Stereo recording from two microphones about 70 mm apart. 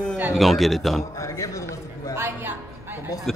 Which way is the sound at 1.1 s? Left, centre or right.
Left.